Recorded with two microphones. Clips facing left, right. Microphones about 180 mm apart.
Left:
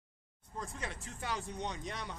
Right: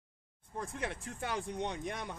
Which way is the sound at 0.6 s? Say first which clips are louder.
Right 4 dB; 60° right (ahead or behind).